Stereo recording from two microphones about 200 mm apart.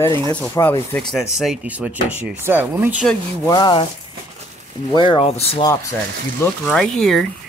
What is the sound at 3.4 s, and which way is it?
Speech, 20° left (ahead or behind).